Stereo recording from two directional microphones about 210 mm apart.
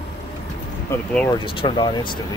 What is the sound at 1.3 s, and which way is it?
Speech, 25° left (ahead or behind).